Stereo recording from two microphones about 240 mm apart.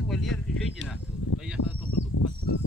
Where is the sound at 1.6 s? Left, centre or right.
Left.